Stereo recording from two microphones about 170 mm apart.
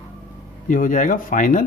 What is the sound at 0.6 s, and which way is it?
Speech, 50° left (ahead or behind).